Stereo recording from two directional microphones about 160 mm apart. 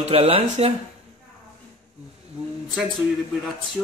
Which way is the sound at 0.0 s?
40° right (ahead or behind).